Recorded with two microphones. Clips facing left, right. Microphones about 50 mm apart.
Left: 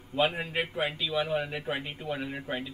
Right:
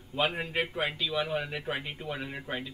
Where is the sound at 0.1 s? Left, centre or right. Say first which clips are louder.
Left 2 dB; centre.